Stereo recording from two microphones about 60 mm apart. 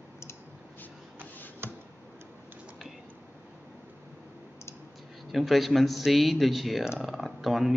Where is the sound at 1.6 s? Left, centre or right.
Right.